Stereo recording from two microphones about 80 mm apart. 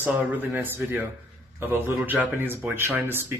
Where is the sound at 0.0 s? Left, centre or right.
Right.